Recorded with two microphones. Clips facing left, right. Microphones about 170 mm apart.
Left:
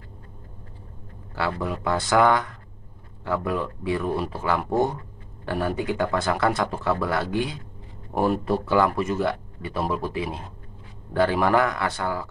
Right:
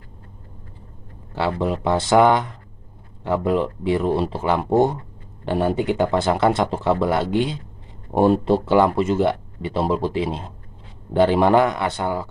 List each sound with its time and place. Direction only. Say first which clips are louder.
1.3 s speech: right 5 dB; 20° right (ahead or behind)